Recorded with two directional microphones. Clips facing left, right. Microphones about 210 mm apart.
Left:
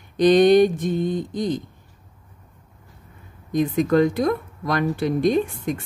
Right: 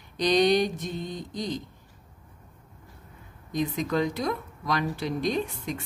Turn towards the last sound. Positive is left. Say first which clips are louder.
# left 8 dB
turn(degrees=50)  # may be behind; listen again after turning